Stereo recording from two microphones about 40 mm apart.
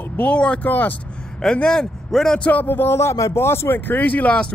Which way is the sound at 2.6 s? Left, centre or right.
Left.